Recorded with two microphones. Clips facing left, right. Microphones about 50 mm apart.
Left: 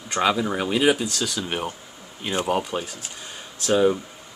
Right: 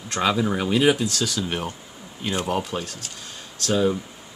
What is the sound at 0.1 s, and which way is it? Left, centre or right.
Speech, centre.